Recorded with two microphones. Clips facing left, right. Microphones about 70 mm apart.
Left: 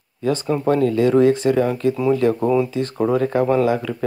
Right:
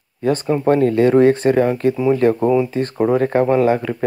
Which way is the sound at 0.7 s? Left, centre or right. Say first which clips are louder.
Right 3 dB; right.